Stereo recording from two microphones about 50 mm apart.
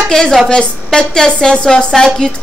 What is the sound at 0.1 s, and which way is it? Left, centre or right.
A woman's voice, centre.